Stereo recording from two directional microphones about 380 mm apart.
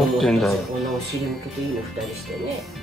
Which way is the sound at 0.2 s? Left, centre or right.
Centre.